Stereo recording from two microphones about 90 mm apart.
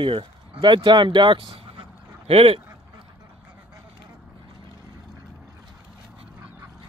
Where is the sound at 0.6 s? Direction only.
55° right (ahead or behind); by 2.6 s 90° right.